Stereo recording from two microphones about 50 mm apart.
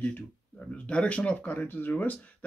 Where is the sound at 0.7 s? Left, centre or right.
Left.